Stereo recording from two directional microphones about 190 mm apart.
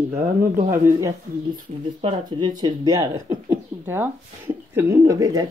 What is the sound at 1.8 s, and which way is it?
Speech, 30° right (ahead or behind).